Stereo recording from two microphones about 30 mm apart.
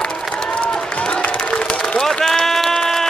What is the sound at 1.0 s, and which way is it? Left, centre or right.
Applause, left.